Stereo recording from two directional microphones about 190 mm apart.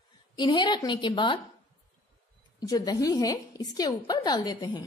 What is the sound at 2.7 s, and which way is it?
A woman's voice, 20° left (ahead or behind).